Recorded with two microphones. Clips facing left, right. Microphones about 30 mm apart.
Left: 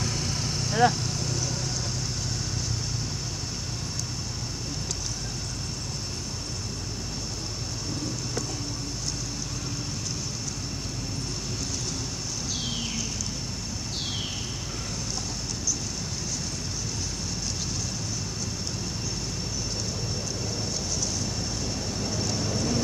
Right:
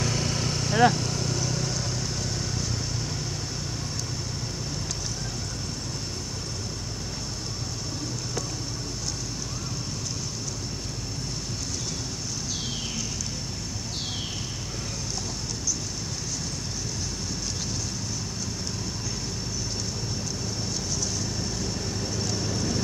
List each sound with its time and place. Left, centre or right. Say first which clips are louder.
0.2 s vehicle: right 2 dB; right
22.2 s vehicle: left 1 dB; centre